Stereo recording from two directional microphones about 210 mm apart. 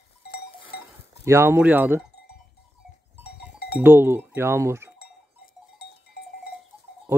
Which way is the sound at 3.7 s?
10° right (ahead or behind).